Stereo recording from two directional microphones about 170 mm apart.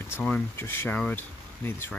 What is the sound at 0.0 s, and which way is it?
Speech, 10° left (ahead or behind).